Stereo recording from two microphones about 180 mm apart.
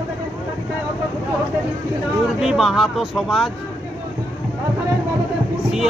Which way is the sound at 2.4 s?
Centre (ahead or behind).